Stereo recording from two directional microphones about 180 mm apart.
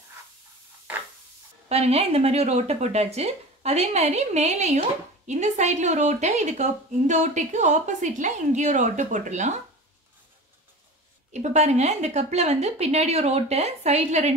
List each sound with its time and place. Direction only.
1.7 s a woman's voice: 35° right (ahead or behind)
11.3 s a woman's voice: 40° right (ahead or behind)